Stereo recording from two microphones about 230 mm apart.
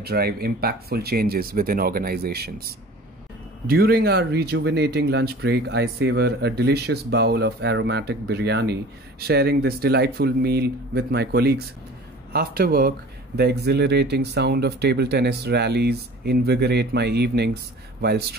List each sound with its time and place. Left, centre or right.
0.0 s speech: right